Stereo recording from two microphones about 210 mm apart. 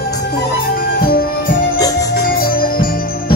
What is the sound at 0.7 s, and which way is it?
Music, 45° left (ahead or behind).